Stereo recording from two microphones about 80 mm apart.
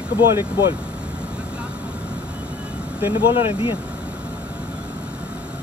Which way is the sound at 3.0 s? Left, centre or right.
Right.